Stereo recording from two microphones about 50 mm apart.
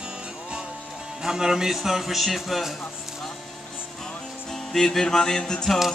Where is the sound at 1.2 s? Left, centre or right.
Centre.